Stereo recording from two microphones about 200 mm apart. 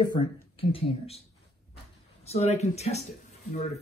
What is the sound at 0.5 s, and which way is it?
Speech, 30° left (ahead or behind).